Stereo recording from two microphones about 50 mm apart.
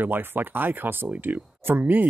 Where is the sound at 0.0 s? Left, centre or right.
Right.